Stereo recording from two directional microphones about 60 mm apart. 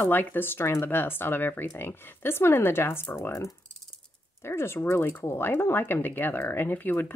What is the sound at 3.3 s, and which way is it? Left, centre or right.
Speech, left.